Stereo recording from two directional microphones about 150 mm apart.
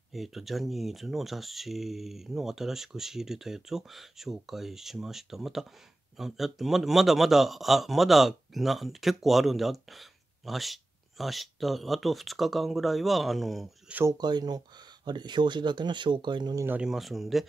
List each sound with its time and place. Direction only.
0.1 s a man's voice: centre (ahead or behind)
14.1 s speech: 25° right (ahead or behind)
16.6 s a man's voice: 10° right (ahead or behind)